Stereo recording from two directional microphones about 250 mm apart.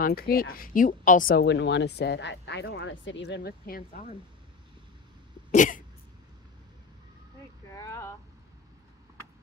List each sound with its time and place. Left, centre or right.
0.0 s speech: left
5.5 s cough: left
7.7 s a sound: centre